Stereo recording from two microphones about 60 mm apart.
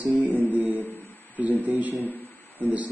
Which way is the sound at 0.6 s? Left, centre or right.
Right.